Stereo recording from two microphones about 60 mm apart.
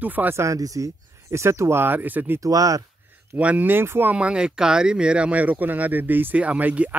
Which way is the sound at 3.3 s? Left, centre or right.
Right.